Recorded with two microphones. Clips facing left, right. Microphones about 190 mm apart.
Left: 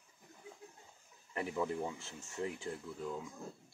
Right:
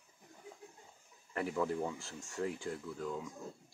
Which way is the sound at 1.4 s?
Centre (ahead or behind).